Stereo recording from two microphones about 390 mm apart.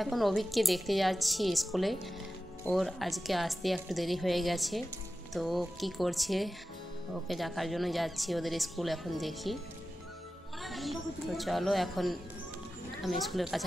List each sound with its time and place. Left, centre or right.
0.0 s a woman's voice: centre
10.6 s a woman's voice: centre